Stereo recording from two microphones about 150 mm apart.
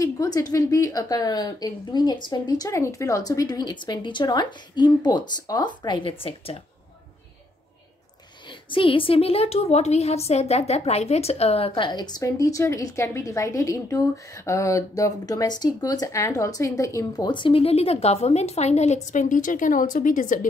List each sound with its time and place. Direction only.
0.0 s a woman's voice: 25° left (ahead or behind); by 6.6 s 40° left (ahead or behind)
8.5 s a woman's voice: 35° left (ahead or behind); by 20.3 s 60° left (ahead or behind)